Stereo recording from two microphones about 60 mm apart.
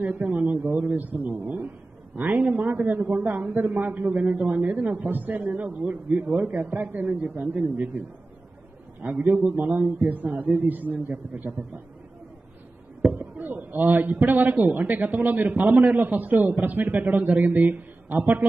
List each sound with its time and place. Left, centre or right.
0.0 s a man's voice: right
9.0 s a man's voice: right
13.2 s a man's voice: right